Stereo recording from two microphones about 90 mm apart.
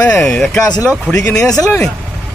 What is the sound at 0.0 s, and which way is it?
Speech, 15° left (ahead or behind).